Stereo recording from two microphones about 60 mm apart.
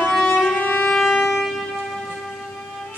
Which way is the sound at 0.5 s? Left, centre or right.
Left.